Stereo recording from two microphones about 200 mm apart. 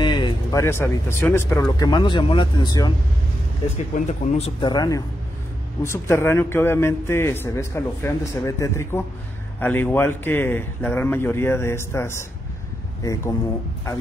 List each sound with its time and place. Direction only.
0.0 s speech: 25° left (ahead or behind)
3.7 s speech: 35° left (ahead or behind)
4.6 s a man's voice: 20° left (ahead or behind)